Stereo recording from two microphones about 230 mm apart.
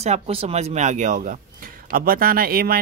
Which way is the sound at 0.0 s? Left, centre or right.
Right.